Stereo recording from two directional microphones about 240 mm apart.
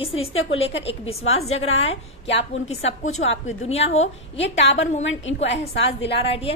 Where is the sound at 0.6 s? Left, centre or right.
Left.